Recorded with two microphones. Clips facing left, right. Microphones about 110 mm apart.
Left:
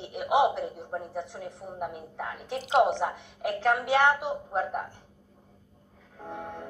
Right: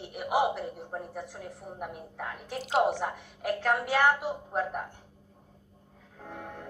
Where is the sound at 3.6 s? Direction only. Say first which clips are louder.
Left 3 dB; 25° left (ahead or behind).